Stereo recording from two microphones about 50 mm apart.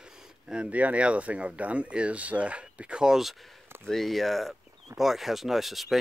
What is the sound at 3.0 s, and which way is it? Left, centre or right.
Speech, centre.